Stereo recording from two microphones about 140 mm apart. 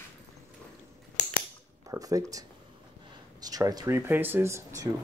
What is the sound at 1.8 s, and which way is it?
Speech, 25° right (ahead or behind).